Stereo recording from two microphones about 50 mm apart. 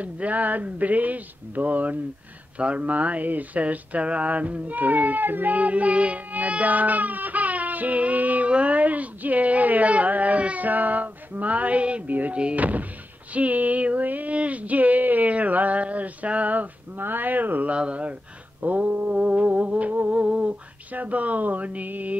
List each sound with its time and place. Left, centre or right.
0.0 s speech: right
17.7 s speech: right
18.6 s speech: right
19.1 s music: right
20.2 s a sound: right